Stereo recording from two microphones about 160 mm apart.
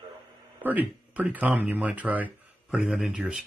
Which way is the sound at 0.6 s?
10° right (ahead or behind).